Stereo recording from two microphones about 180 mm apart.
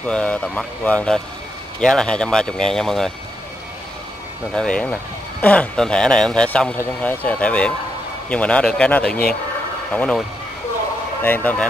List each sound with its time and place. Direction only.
0.0 s speech: 5° left (ahead or behind)
4.6 s speech: 5° left (ahead or behind)
11.2 s speech: 10° left (ahead or behind)